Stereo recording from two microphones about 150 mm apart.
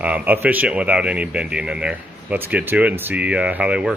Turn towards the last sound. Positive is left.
turn(degrees=-5)  # may be behind; listen again after turning